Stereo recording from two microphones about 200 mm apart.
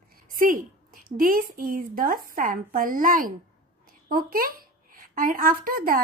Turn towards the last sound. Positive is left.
turn(degrees=-45)  # may be behind; listen again after turning